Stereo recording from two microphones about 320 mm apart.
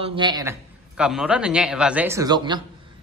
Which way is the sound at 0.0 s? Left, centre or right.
Centre.